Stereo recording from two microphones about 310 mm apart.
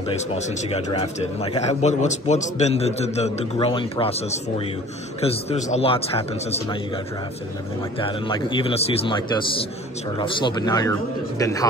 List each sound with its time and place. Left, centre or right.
0.3 s speech: left
8.0 s speech: centre